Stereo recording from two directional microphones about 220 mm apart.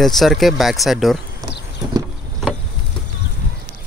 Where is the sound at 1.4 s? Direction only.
15° right (ahead or behind).